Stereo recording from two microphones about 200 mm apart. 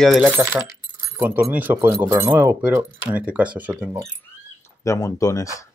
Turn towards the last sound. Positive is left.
turn(degrees=15)  # may be behind; listen again after turning